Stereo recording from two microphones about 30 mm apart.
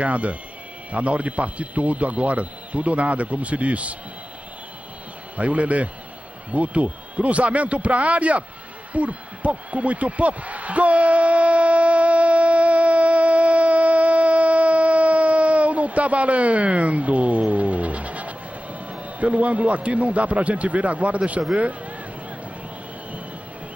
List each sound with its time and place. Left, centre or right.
0.0 s speech: right
5.4 s speech: right
9.7 s a sound: right